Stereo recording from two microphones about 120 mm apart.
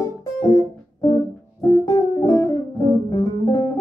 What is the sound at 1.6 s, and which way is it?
Music, 30° left (ahead or behind).